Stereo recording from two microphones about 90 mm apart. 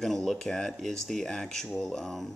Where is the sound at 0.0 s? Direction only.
5° left (ahead or behind).